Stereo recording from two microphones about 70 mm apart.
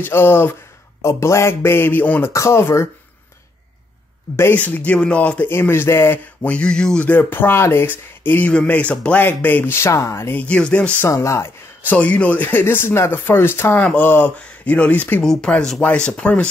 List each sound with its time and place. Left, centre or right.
0.0 s speech: left
1.0 s speech: left
2.3 s speech: left
4.4 s speech: left
5.5 s speech: left; by 7.1 s centre
7.1 s speech: left
8.5 s speech: centre
9.8 s speech: left
10.3 s speech: centre
11.0 s speech: left
11.9 s speech: centre; by 13.7 s left
13.7 s speech: left
15.5 s speech: centre